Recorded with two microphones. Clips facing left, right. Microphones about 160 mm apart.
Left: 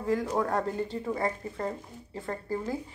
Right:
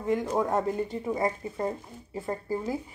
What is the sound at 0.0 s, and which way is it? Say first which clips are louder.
Speech: right 1 dB; 20° right (ahead or behind).